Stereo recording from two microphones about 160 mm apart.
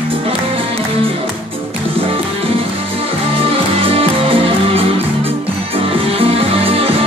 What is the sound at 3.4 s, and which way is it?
Music, 35° right (ahead or behind).